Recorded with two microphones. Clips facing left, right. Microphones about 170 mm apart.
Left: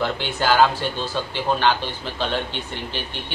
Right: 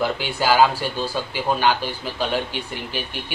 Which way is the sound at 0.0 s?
10° right (ahead or behind).